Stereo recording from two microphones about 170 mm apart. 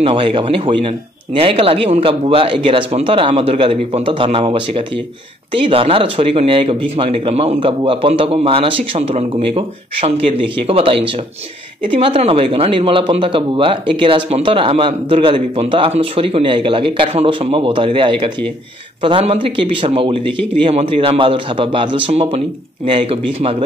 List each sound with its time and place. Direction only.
0.0 s speech: 30° right (ahead or behind)